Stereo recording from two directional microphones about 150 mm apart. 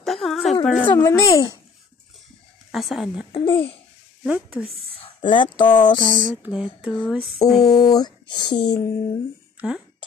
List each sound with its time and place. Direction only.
0.0 s a sound: centre (ahead or behind)
0.7 s speech: 5° left (ahead or behind)
2.7 s speech: centre (ahead or behind)
3.3 s speech: 35° left (ahead or behind)
4.2 s speech: 5° right (ahead or behind)
4.9 s speech: 35° left (ahead or behind)
6.3 s speech: 5° right (ahead or behind)
7.6 s speech: 25° left (ahead or behind)
9.6 s speech: 5° right (ahead or behind)